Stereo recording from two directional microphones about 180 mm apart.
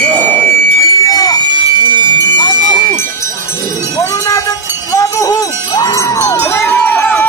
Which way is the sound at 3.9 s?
20° left (ahead or behind).